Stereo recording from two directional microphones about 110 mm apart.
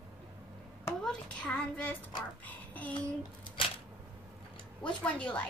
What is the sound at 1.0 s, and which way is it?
A child's voice, 10° left (ahead or behind).